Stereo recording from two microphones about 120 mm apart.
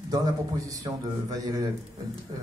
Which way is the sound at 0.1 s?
30° right (ahead or behind).